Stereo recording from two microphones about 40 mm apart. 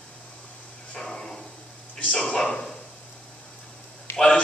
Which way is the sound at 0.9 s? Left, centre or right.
Centre.